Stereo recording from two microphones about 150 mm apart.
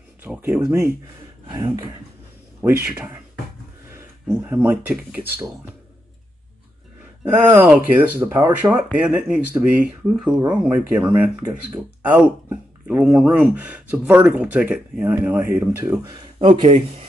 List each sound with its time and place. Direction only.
0.4 s speech: 15° right (ahead or behind)
1.5 s speech: 30° right (ahead or behind)
2.6 s speech: 15° right (ahead or behind)
3.9 s a sound: 20° right (ahead or behind)
4.6 s speech: 10° right (ahead or behind)
7.2 s speech: 10° right (ahead or behind)
16.1 s speech: 35° right (ahead or behind)